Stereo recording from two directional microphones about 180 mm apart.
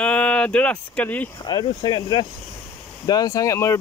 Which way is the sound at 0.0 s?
5° left (ahead or behind).